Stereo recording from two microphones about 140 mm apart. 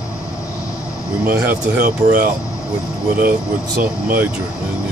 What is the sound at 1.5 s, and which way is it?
Speech, 90° right.